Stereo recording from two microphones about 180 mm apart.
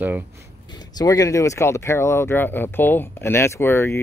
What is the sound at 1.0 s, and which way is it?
Speech, 20° left (ahead or behind).